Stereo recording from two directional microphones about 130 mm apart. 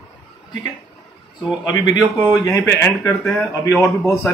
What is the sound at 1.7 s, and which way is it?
Speech, 30° left (ahead or behind).